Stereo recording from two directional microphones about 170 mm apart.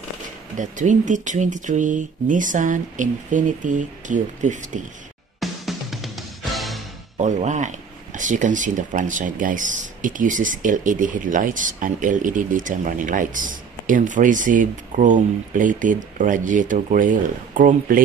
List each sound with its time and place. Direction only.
0.6 s speech: 50° right (ahead or behind)
5.4 s music: centre (ahead or behind)
7.2 s speech: 45° right (ahead or behind)